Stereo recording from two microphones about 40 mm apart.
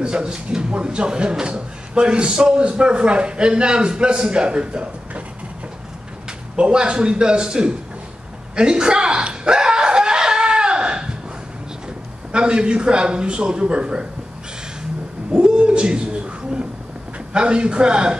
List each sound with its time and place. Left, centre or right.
0.0 s a man's voice: right
6.5 s a man's voice: right
8.5 s a sound: right
12.3 s a man's voice: right
15.3 s a sound: right
17.3 s a man's voice: right